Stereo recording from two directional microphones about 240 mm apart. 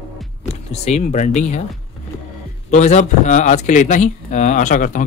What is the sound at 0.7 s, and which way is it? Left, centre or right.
Speech, left.